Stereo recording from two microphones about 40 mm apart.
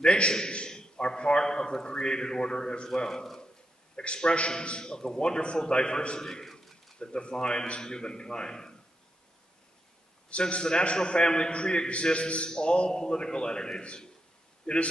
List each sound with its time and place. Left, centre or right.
0.0 s a man's voice: left
3.9 s a man's voice: left
6.4 s a sound: centre
7.0 s a man's voice: left
10.3 s a man's voice: left